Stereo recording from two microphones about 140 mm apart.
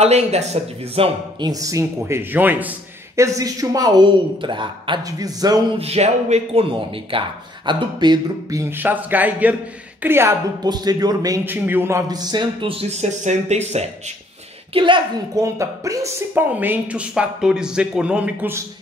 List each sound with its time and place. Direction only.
0.0 s speech: 50° right (ahead or behind)
1.5 s speech: 25° right (ahead or behind)
5.8 s a man's voice: 50° right (ahead or behind); by 10.3 s 15° right (ahead or behind)
10.6 s speech: 30° right (ahead or behind)
11.4 s speech: 15° right (ahead or behind)
12.1 s speech: 30° right (ahead or behind); by 13.8 s 50° right (ahead or behind)
14.7 s a man's voice: 35° right (ahead or behind)
15.3 s speech: 20° right (ahead or behind)